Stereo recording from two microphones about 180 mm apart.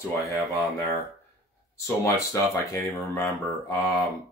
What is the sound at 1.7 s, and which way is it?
Speech, 15° left (ahead or behind).